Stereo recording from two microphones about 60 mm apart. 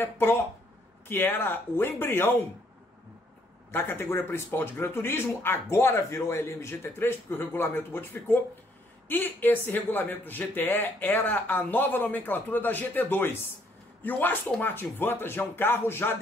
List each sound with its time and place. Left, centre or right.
0.0 s speech: left
3.7 s speech: left